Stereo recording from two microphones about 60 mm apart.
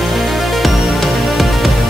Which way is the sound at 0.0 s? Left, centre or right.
Centre.